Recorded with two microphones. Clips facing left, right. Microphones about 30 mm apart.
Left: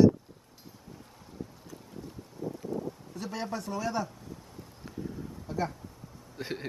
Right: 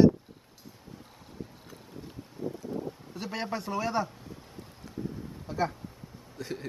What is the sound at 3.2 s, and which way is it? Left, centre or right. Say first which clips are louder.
Speech: right 2 dB; right.